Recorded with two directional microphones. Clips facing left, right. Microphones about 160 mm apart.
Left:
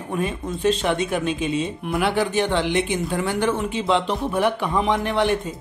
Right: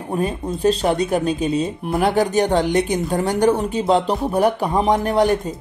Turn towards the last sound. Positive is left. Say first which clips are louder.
# right 4 dB
turn(degrees=-40)  # may be behind; listen again after turning